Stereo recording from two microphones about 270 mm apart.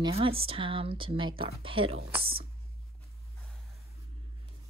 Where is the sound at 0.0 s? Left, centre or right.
Centre.